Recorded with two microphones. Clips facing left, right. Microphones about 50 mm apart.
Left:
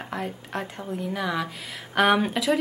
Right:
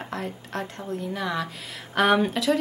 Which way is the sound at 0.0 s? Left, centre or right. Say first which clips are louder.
Left 1 dB; centre.